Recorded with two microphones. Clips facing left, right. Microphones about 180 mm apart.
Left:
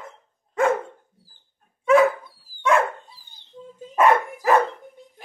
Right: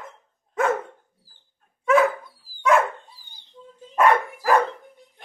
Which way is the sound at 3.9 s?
Centre (ahead or behind).